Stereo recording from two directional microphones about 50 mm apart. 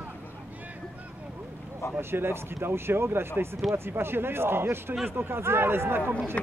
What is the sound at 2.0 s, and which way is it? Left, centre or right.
Speech, right.